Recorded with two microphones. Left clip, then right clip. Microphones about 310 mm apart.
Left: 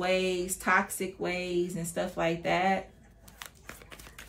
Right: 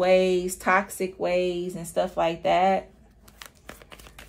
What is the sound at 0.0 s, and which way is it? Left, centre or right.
A woman's voice, right.